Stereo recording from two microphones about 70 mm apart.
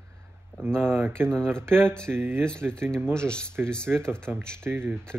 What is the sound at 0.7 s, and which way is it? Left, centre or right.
Speech, right.